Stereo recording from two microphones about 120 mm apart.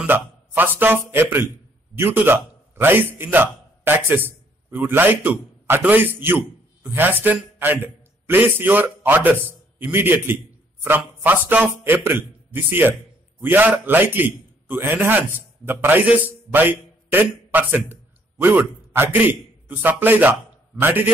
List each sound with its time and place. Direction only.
0.0 s a man's voice: 15° right (ahead or behind)